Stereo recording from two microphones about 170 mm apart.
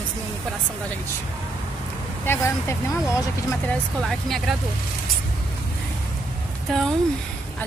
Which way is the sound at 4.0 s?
Centre (ahead or behind).